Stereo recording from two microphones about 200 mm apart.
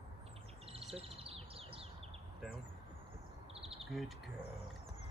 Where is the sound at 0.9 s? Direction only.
30° right (ahead or behind).